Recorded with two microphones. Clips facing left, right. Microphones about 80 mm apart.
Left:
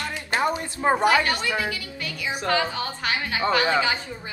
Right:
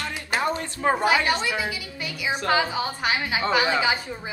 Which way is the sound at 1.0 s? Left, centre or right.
Centre.